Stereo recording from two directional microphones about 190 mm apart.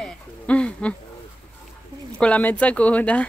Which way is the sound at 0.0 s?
5° left (ahead or behind).